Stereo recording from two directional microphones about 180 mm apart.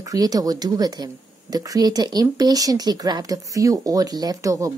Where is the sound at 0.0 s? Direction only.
20° right (ahead or behind).